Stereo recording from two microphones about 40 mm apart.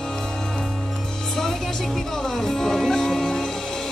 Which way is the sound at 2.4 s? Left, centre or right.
Centre.